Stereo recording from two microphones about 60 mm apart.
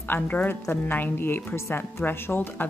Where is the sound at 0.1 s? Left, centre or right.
Left.